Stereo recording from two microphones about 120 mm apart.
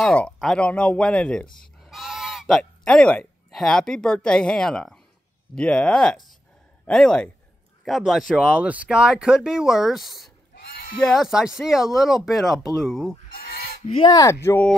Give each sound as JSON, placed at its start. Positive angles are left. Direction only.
{"t": 0.1, "sound": "speech", "side_deg": 5}
{"t": 13.8, "sound": "speech", "side_deg": 45}
{"t": 14.1, "sound": "speech", "side_deg": 25}